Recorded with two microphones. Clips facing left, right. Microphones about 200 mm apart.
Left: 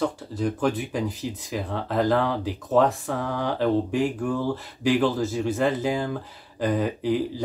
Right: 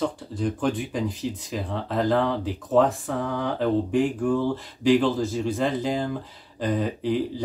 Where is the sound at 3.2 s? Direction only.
35° left (ahead or behind).